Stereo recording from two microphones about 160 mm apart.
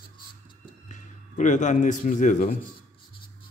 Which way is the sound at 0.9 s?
50° left (ahead or behind).